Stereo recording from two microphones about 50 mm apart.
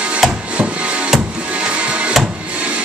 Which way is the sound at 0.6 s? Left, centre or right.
Right.